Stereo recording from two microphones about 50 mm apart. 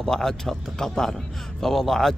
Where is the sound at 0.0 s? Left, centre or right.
Centre.